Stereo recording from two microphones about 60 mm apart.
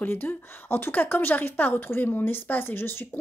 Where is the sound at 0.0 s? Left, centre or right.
Left.